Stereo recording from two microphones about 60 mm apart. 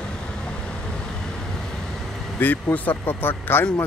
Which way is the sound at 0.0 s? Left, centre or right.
Centre.